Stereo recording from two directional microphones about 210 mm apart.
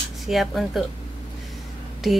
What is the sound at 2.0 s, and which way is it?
Speech, centre (ahead or behind).